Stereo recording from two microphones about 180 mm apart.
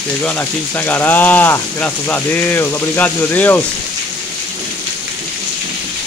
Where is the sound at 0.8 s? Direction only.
10° left (ahead or behind).